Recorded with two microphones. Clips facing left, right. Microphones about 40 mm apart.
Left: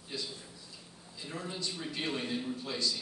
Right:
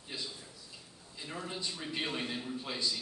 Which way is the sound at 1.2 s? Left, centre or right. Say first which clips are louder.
Left 1 dB; centre.